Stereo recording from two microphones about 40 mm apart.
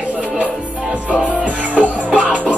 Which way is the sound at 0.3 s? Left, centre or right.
Right.